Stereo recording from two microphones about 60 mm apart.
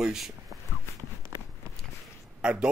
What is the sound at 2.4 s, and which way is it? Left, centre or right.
Speech, centre.